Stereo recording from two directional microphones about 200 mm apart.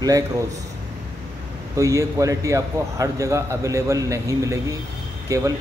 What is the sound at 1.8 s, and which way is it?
A man's voice, 15° right (ahead or behind).